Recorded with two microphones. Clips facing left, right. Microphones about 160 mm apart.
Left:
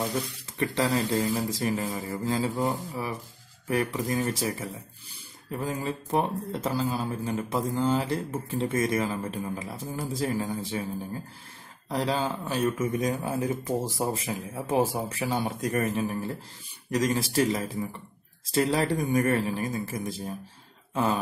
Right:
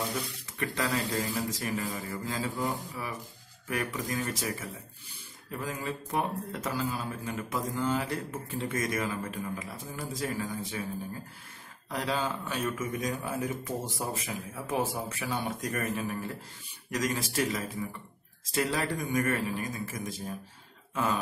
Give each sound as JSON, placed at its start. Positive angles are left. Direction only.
{"t": 0.6, "sound": "speech", "side_deg": 30}
{"t": 2.0, "sound": "speech", "side_deg": 25}
{"t": 11.9, "sound": "speech", "side_deg": 30}
{"t": 20.9, "sound": "throat clearing", "side_deg": 30}